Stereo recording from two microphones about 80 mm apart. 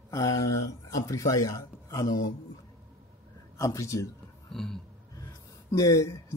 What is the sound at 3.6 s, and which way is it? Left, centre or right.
Speech, left.